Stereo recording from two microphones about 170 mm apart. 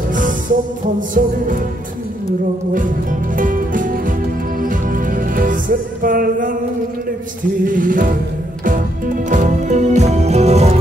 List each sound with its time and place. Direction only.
0.1 s music: 50° right (ahead or behind)
2.7 s music: 55° right (ahead or behind)
7.6 s music: 50° right (ahead or behind)